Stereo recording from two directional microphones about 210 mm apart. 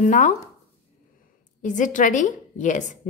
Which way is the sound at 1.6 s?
40° left (ahead or behind).